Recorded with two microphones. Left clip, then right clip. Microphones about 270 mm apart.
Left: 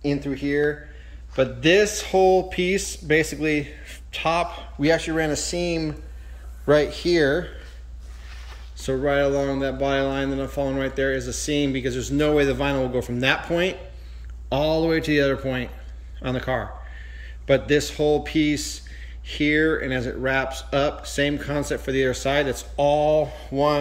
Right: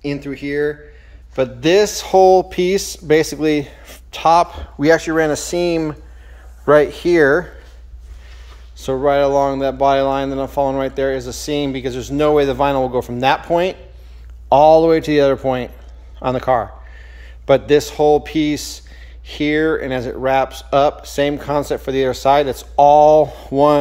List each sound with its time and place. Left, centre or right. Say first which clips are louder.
0.0 s speech: right 2 dB; centre
8.8 s speech: right 7 dB; centre